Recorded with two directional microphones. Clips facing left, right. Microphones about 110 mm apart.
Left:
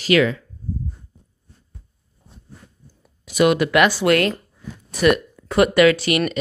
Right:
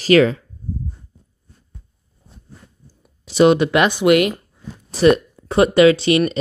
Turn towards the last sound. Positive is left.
turn(degrees=-25)  # may be behind; listen again after turning